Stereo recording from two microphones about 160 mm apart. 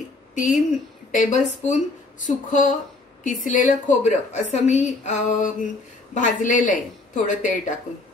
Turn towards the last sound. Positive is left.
turn(degrees=50)  # may be behind; listen again after turning